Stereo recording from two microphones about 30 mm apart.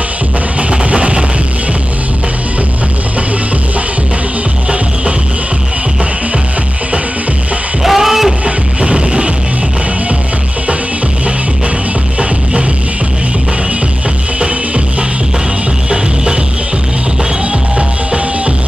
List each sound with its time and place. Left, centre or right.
0.6 s music: right
7.8 s a sound: centre
8.5 s music: right
14.4 s music: right
17.5 s music: right